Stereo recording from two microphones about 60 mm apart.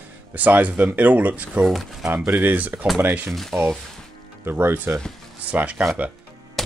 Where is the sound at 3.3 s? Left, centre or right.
Centre.